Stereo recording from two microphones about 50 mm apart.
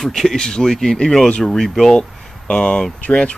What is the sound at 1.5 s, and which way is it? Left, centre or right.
Speech, centre.